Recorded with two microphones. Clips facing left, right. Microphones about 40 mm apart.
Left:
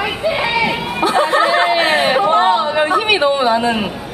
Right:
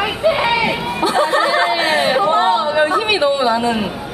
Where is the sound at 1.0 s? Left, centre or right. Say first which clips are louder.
Left 2 dB; centre.